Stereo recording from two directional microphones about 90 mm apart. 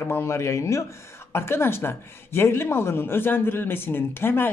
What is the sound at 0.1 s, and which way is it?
Speech, 30° left (ahead or behind).